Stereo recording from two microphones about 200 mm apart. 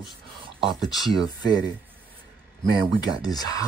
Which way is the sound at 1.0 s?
20° left (ahead or behind).